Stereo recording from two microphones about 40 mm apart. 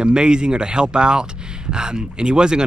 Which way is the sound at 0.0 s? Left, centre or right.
Right.